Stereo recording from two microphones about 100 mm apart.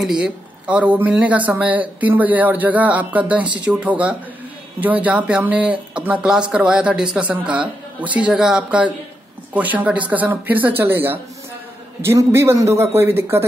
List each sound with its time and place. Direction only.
0.0 s a man's voice: 10° right (ahead or behind)